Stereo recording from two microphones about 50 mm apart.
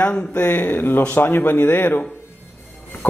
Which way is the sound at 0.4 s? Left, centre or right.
Left.